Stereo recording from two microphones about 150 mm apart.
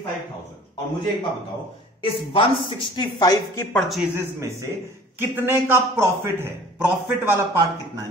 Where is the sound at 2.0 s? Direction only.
35° left (ahead or behind); by 3.8 s 15° left (ahead or behind).